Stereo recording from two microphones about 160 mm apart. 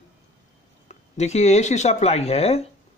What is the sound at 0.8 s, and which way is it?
Speech, 45° left (ahead or behind).